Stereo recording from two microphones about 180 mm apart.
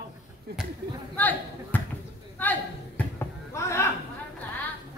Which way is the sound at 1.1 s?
10° left (ahead or behind).